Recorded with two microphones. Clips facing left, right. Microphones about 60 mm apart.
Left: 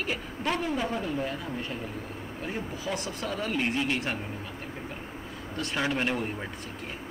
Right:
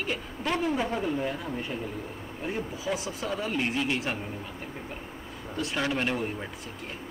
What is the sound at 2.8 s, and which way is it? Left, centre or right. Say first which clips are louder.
Speech: right 1 dB; centre.